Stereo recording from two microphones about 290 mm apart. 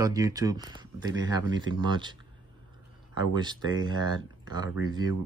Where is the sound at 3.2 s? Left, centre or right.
Centre.